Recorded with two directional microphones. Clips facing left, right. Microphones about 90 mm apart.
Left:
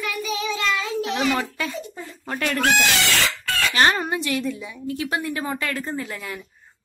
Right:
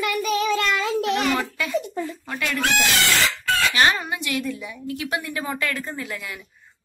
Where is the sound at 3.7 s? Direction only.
40° left (ahead or behind).